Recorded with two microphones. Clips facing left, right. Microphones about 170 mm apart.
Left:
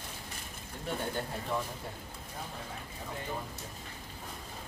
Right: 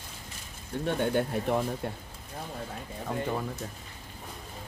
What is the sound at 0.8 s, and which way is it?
Speech, 65° right (ahead or behind).